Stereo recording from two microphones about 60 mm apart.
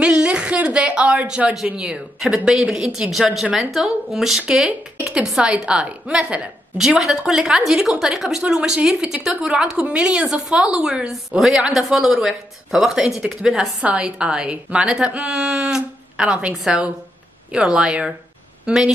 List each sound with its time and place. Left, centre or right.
0.0 s a woman's voice: centre